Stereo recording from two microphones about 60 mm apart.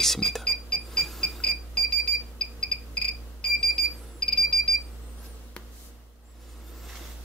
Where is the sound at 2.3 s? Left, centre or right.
Centre.